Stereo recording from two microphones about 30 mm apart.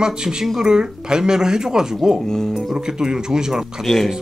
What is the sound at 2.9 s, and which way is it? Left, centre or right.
Speech, right.